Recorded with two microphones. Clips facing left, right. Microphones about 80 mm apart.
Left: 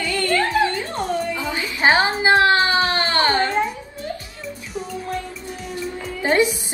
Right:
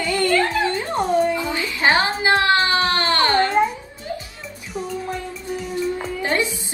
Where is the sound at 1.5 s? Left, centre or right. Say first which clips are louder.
Left 4 dB; left.